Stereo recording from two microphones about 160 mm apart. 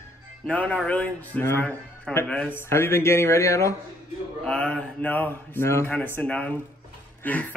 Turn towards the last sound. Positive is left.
turn(degrees=10)  # may be behind; listen again after turning